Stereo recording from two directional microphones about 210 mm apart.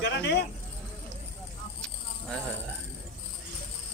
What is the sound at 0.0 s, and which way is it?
Speech, 55° left (ahead or behind).